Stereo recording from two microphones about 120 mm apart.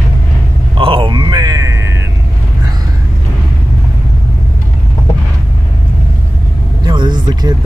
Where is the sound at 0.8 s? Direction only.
45° right (ahead or behind).